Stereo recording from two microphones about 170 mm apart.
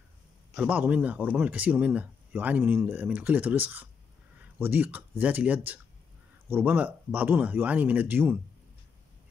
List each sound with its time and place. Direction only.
0.6 s speech: 10° right (ahead or behind)